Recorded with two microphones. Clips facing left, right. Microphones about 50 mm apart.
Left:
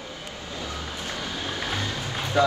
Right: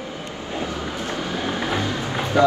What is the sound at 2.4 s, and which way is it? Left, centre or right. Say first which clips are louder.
Speech: right 5 dB; right.